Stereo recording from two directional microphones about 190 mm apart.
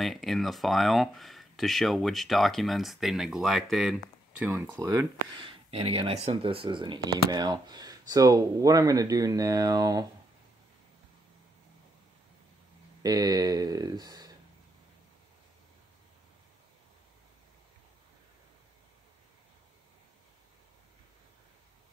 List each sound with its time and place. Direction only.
0.0 s speech: centre (ahead or behind)
4.6 s speech: 20° right (ahead or behind)
13.0 s speech: 20° right (ahead or behind)